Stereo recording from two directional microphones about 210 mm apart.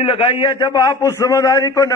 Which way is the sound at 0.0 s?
25° left (ahead or behind).